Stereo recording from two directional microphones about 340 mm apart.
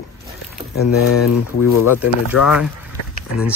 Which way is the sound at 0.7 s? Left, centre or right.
Left.